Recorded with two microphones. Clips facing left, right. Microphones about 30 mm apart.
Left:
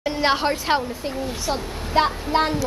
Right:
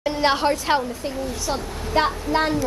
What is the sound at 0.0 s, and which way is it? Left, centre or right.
A child's voice, centre.